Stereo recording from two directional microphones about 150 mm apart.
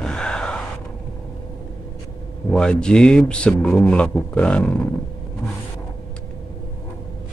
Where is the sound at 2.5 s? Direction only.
5° left (ahead or behind).